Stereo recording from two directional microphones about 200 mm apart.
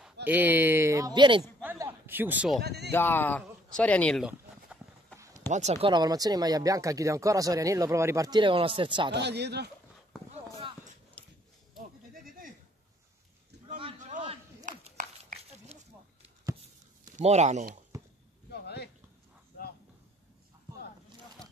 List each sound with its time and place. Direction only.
0.0 s speech: 10° right (ahead or behind)
1.6 s a man's voice: 10° right (ahead or behind)
2.6 s speech: 55° right (ahead or behind)
2.9 s speech: 10° left (ahead or behind)
4.6 s run: 15° right (ahead or behind)
5.5 s speech: 35° right (ahead or behind)
9.1 s speech: 55° right (ahead or behind)
11.2 s a sound: 5° left (ahead or behind)
13.9 s a sound: 40° right (ahead or behind)
17.2 s speech: 35° right (ahead or behind)
18.5 s a sound: 55° left (ahead or behind)